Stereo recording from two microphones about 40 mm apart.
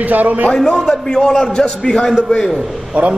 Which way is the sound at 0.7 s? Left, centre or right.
Centre.